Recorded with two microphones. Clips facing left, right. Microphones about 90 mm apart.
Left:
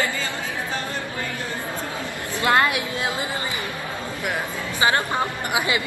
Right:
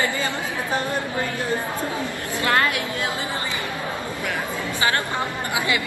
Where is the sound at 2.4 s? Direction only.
20° left (ahead or behind).